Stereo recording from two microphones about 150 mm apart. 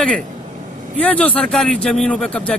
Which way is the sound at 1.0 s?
10° left (ahead or behind).